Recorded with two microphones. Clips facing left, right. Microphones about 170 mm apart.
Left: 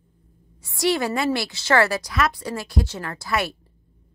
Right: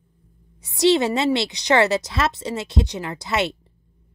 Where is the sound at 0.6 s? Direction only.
20° right (ahead or behind).